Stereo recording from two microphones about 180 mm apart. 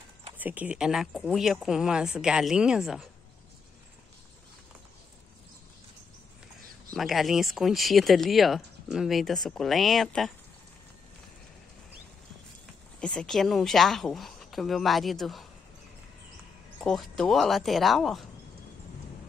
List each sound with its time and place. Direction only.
0.4 s speech: 10° right (ahead or behind)
7.0 s speech: centre (ahead or behind)
13.0 s speech: 5° left (ahead or behind)
16.8 s speech: centre (ahead or behind)